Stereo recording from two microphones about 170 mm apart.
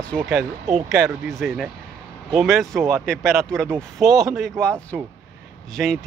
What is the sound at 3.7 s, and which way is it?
Speech, 20° right (ahead or behind).